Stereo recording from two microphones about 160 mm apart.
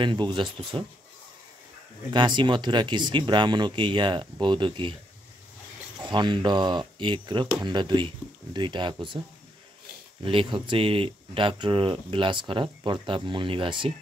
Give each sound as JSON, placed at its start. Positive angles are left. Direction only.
{"t": 0.0, "sound": "speech", "side_deg": -30}
{"t": 2.1, "sound": "speech", "side_deg": -30}
{"t": 6.0, "sound": "speech", "side_deg": -30}
{"t": 10.2, "sound": "speech", "side_deg": -30}